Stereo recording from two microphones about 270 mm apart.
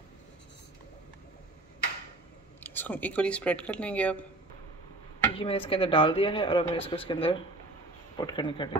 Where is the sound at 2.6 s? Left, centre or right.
Centre.